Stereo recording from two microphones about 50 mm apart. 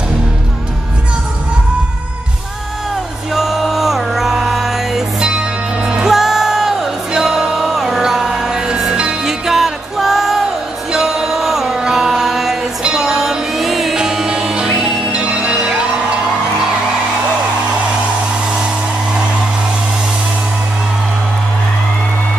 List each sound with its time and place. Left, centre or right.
3.3 s music: centre
5.3 s music: centre
6.0 s music: centre
15.1 s music: right